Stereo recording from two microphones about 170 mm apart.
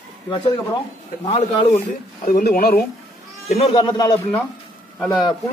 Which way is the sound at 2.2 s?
60° left (ahead or behind).